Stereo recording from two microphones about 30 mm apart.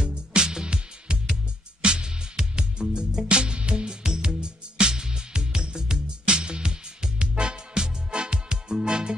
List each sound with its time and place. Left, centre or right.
0.0 s music: right
7.2 s music: right